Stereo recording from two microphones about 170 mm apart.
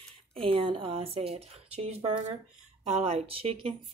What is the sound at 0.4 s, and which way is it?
Speech, 30° right (ahead or behind).